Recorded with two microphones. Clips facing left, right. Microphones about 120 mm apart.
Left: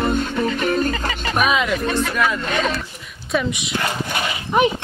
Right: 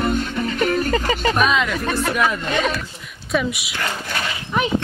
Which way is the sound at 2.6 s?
Centre (ahead or behind).